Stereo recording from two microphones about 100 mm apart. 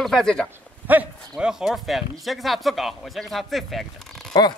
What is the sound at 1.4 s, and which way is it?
Speech, 5° right (ahead or behind).